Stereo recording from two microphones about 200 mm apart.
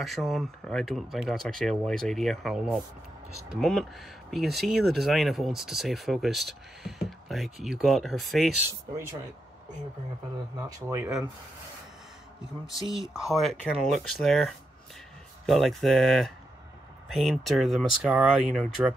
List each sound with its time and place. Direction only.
0.0 s speech: centre (ahead or behind)
10.9 s speech: 5° right (ahead or behind)
12.6 s speech: centre (ahead or behind)